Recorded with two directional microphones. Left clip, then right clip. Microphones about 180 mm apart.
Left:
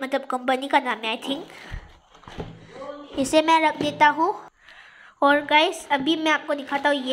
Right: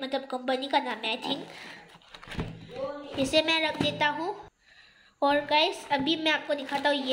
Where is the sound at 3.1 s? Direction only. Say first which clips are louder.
Left 7 dB; 25° left (ahead or behind).